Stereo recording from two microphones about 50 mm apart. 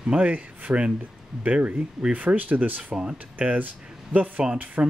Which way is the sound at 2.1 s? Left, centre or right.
Right.